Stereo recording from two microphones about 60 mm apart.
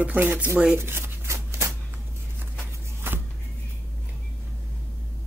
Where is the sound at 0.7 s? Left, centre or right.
Right.